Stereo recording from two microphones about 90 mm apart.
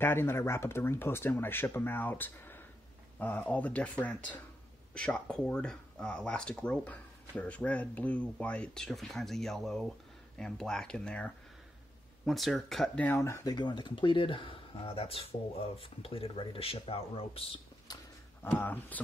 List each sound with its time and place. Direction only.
0.0 s speech: 25° left (ahead or behind)
12.3 s speech: centre (ahead or behind)
13.0 s speech: 30° left (ahead or behind)
13.5 s speech: 55° left (ahead or behind); by 17.5 s 90° left
17.9 s a sound: 50° left (ahead or behind)
18.5 s speech: 20° left (ahead or behind)